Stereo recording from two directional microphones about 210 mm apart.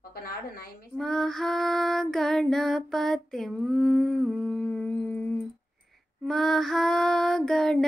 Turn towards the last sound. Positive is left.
turn(degrees=0)  # may be behind; listen again after turning